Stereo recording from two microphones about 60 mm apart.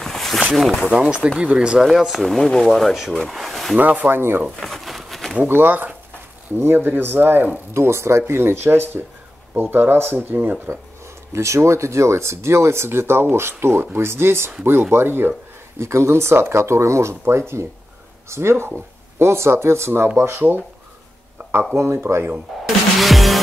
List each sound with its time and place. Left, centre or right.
0.0 s a sound: centre
0.8 s speech: centre
1.8 s speech: centre
3.7 s speech: right
4.6 s a sound: centre
5.4 s speech: right
7.7 s speech: right
11.3 s speech: right
15.8 s speech: right
17.1 s speech: right
21.4 s a sound: right
21.7 s speech: right
22.0 s speech: right
22.5 s speech: centre